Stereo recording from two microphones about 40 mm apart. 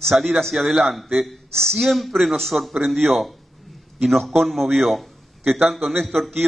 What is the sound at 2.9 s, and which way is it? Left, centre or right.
A man's voice, centre.